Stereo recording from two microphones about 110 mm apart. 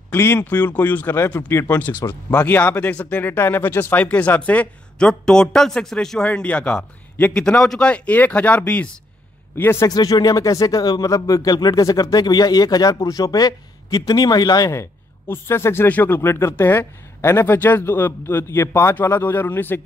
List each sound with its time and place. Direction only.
0.1 s speech: 25° left (ahead or behind)
2.0 s speech: 30° left (ahead or behind)
2.4 s speech: 20° left (ahead or behind)
9.8 s speech: 35° left (ahead or behind)
14.7 s speech: 25° left (ahead or behind)